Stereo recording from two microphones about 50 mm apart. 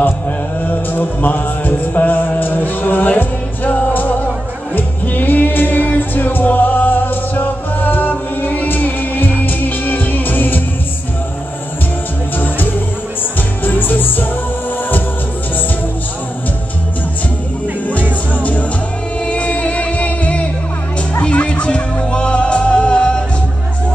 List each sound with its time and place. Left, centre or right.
0.7 s music: left
13.7 s music: left
18.3 s music: left